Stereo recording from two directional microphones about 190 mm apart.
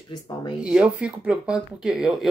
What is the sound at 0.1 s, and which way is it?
Speech, 20° left (ahead or behind).